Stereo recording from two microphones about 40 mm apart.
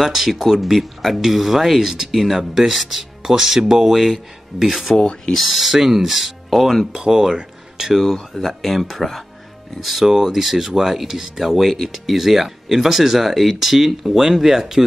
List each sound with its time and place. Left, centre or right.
0.0 s speech: centre
3.2 s speech: centre
4.9 s speech: centre
5.4 s speech: centre
6.9 s speech: centre
7.7 s a sound: centre
8.0 s speech: centre